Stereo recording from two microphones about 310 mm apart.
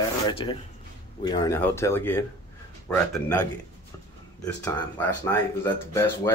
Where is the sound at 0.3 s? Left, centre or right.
Centre.